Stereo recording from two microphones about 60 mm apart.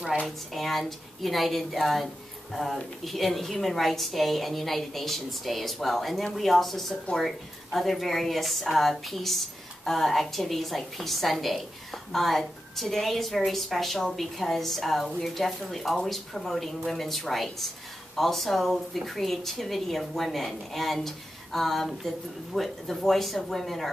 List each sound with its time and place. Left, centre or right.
0.6 s speech: centre